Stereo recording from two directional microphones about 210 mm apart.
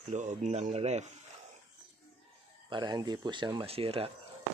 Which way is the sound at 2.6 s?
20° right (ahead or behind).